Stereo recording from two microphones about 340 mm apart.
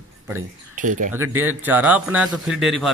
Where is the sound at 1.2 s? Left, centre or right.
Centre.